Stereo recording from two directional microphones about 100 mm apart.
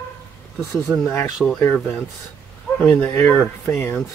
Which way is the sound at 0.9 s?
10° right (ahead or behind).